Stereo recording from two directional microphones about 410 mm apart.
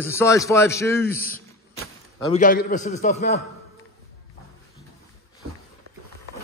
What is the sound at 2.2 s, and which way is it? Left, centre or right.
A man's voice, centre.